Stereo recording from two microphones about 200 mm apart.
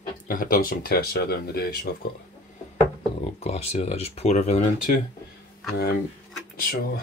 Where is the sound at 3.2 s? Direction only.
30° left (ahead or behind).